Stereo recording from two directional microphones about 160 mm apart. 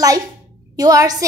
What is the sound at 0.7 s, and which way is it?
Speech, 25° right (ahead or behind).